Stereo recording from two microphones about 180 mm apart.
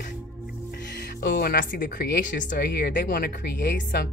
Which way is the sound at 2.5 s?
70° left (ahead or behind).